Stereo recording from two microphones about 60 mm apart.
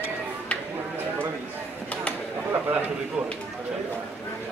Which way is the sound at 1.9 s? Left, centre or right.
Left.